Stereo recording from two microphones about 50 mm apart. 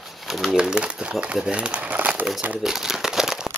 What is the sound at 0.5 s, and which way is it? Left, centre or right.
Speech, centre.